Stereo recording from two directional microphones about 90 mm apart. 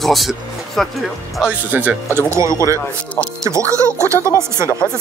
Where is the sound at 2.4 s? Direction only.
35° right (ahead or behind).